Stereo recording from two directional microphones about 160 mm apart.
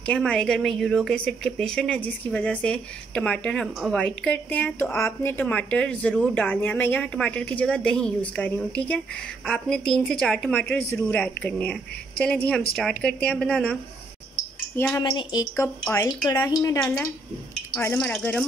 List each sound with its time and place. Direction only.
0.0 s speech: 5° left (ahead or behind)
14.8 s speech: 15° left (ahead or behind)
15.0 s speech: 25° left (ahead or behind); by 18.4 s 10° left (ahead or behind)